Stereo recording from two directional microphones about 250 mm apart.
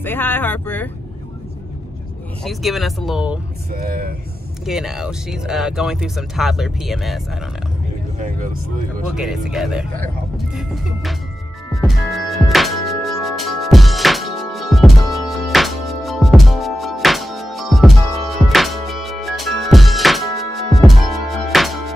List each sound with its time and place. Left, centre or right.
0.0 s speech: centre
2.4 s speech: centre
3.7 s speech: right
4.6 s speech: centre
9.1 s speech: centre
9.9 s vehicle: centre
11.7 s music: centre